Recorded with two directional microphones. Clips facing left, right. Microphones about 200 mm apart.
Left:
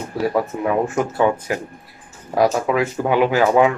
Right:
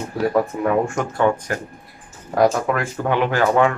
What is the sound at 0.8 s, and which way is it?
Speech, 5° left (ahead or behind).